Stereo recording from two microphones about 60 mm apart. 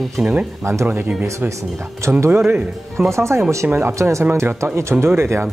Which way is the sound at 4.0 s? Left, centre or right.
Right.